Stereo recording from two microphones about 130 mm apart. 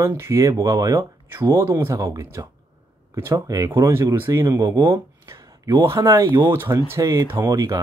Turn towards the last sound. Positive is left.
turn(degrees=-25)  # may be behind; listen again after turning